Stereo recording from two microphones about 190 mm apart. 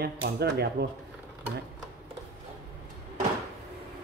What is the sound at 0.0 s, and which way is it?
Speech, 60° right (ahead or behind).